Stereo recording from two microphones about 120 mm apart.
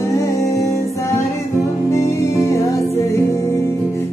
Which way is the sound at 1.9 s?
25° left (ahead or behind).